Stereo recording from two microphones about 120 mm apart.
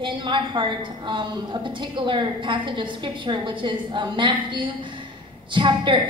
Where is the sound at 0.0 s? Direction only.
40° right (ahead or behind).